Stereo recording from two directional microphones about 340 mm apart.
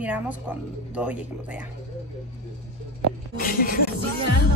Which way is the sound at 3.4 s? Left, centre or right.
Left.